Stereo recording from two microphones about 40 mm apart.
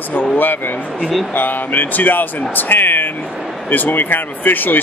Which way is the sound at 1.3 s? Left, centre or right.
Left.